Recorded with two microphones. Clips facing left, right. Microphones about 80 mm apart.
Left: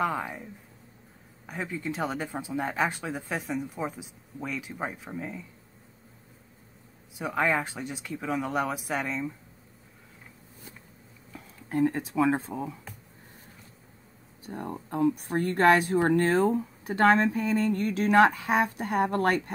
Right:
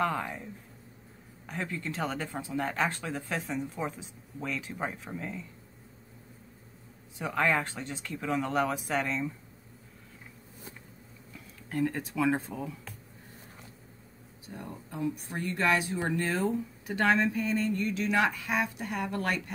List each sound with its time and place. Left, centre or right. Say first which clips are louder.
0.0 s speech: left 1 dB; centre
7.2 s speech: left 1 dB; centre
11.3 s speech: left 4 dB; left
14.4 s speech: left 7 dB; left
17.7 s speech: left 7 dB; left